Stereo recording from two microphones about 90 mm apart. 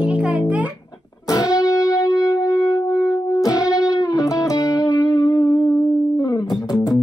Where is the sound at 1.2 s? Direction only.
45° left (ahead or behind).